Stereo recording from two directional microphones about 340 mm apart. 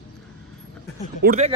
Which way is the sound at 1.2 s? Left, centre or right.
Right.